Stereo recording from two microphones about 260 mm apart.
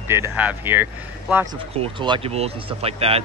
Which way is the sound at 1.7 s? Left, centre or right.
Centre.